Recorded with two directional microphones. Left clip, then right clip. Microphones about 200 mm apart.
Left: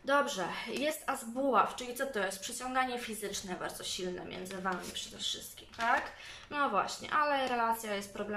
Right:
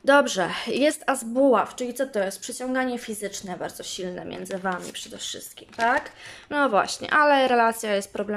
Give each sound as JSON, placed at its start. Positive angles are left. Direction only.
{"t": 0.0, "sound": "a woman's voice", "side_deg": -50}